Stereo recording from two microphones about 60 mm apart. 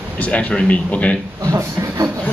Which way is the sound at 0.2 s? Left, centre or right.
Left.